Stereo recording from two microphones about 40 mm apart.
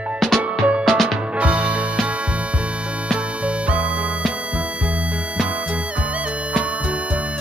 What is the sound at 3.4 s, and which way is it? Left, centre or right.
Music, right.